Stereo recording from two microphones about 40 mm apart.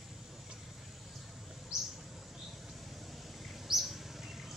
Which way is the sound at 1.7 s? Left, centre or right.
Centre.